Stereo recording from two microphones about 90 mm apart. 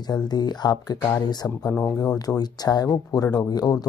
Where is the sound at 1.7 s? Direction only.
20° left (ahead or behind).